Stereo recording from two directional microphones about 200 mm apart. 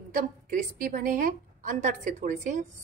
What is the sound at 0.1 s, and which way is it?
A woman's voice, 45° right (ahead or behind).